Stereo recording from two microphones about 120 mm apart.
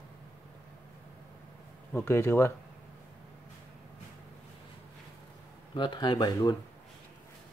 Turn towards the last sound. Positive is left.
turn(degrees=35)  # may be behind; listen again after turning